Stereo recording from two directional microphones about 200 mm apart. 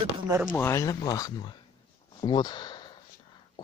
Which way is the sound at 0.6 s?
15° left (ahead or behind).